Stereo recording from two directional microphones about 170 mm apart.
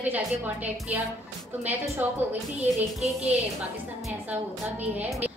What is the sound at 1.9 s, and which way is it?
Speech, 10° right (ahead or behind).